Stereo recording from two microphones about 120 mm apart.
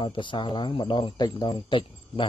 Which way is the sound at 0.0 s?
45° left (ahead or behind).